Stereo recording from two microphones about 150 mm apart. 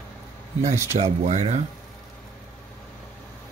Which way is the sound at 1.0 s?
50° right (ahead or behind).